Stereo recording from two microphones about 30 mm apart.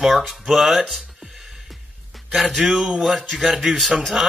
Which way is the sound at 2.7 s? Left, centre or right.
Right.